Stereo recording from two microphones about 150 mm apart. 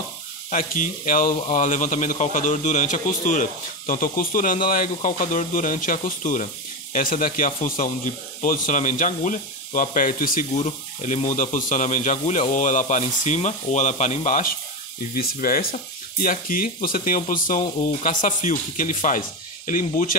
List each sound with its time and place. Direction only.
0.5 s speech: 60° left (ahead or behind)
10.6 s speech: 50° left (ahead or behind)
15.1 s speech: 80° left